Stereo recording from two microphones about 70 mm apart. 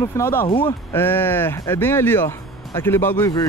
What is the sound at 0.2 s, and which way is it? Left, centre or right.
Speech, left.